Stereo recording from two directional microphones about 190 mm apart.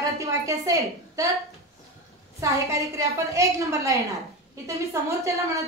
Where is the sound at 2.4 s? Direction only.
15° right (ahead or behind).